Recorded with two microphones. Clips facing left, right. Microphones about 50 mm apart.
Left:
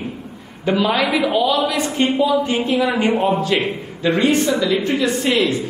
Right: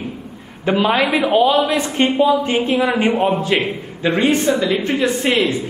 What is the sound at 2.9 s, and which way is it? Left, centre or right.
A man's voice, right.